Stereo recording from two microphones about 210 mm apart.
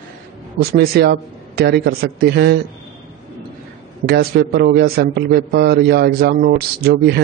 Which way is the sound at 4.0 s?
50° right (ahead or behind).